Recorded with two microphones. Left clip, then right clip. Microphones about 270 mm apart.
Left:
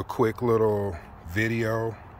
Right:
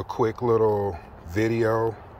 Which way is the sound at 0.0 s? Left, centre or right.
Centre.